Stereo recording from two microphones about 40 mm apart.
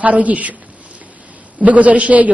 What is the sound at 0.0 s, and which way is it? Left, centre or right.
Speech, right.